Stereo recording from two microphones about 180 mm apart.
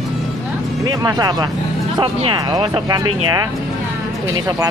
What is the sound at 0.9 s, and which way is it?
Speech, 20° right (ahead or behind).